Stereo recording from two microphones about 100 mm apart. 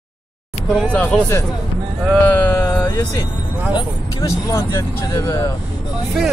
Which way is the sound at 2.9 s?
40° left (ahead or behind).